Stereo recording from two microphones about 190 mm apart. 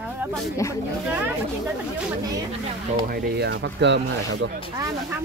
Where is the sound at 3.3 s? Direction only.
65° right (ahead or behind).